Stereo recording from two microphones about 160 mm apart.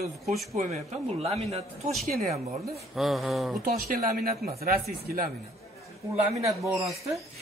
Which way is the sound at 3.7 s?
65° right (ahead or behind).